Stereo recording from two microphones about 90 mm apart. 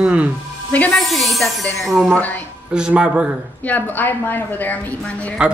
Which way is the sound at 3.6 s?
20° left (ahead or behind).